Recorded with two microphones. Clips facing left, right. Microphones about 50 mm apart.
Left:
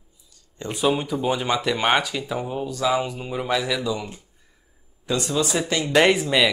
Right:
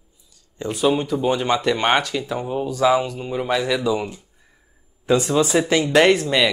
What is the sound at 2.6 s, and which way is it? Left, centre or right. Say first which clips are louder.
Speech: right 6 dB; centre.